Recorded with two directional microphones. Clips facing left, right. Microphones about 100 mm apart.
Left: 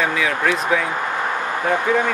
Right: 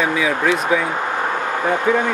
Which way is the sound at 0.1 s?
10° right (ahead or behind).